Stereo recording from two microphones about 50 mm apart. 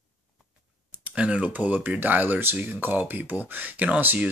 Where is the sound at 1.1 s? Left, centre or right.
Right.